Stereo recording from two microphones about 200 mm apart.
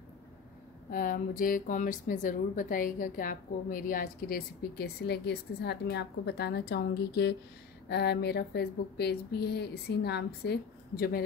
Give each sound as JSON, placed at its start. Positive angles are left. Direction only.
{"t": 0.8, "sound": "speech", "side_deg": 45}